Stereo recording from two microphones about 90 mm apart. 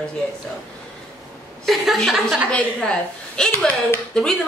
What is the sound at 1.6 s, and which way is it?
A woman's voice, centre (ahead or behind).